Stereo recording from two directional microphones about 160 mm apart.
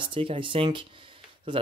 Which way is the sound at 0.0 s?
30° right (ahead or behind).